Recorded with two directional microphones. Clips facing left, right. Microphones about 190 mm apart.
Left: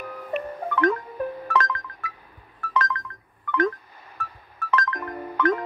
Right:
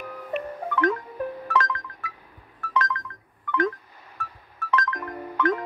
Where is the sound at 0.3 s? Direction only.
50° left (ahead or behind).